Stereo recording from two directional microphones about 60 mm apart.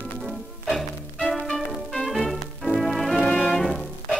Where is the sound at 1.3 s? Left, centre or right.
Centre.